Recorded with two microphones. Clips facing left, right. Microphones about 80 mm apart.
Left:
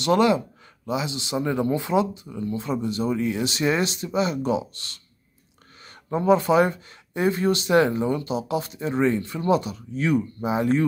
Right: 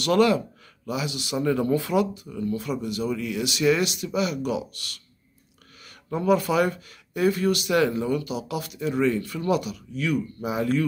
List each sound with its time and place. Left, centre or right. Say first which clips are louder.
0.0 s speech: left 1 dB; left